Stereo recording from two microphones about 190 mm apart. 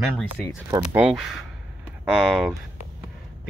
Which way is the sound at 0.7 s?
20° right (ahead or behind).